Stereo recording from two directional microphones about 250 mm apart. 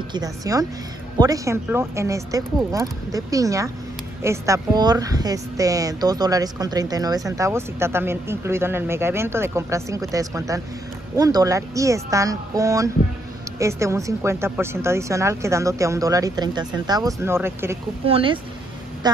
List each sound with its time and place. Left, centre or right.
0.1 s speech: centre
18.0 s speech: right